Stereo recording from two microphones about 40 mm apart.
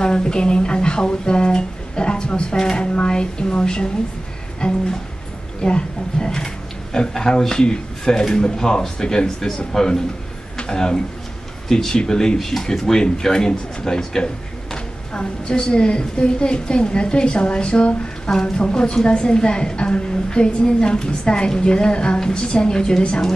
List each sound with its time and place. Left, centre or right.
0.0 s a woman's voice: centre